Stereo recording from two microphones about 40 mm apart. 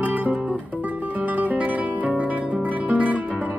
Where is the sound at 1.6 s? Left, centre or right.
Right.